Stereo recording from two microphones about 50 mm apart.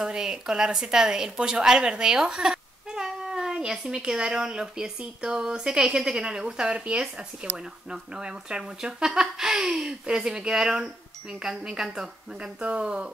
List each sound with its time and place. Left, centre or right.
0.0 s a woman's voice: centre